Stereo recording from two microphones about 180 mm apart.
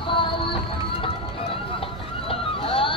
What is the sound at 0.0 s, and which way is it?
Music, 30° left (ahead or behind).